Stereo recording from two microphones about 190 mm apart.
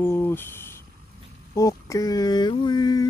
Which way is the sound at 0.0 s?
10° left (ahead or behind).